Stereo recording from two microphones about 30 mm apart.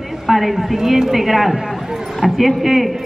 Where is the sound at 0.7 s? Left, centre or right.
Centre.